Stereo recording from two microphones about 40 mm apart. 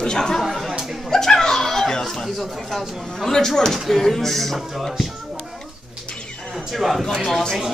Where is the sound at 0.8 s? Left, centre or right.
Centre.